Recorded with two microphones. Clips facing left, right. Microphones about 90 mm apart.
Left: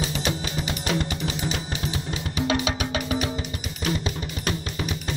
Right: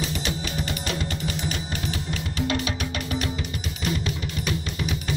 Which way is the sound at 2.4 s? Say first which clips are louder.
Left 2 dB; 85° left.